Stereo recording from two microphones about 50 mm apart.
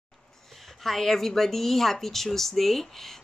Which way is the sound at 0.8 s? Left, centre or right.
Centre.